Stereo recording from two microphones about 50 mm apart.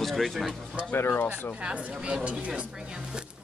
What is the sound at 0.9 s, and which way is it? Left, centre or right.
Speech, left.